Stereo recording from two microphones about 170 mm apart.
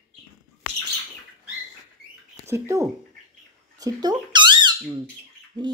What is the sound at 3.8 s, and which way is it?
Squeak, 25° right (ahead or behind).